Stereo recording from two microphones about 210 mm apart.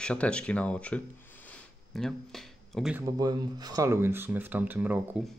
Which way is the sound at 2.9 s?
15° right (ahead or behind).